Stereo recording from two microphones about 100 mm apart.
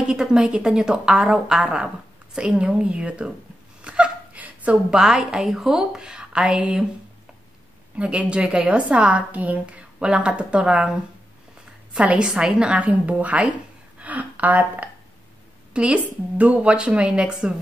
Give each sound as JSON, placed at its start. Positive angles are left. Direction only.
{"t": 0.0, "sound": "a woman's voice", "side_deg": -10}
{"t": 7.9, "sound": "a woman's voice", "side_deg": -10}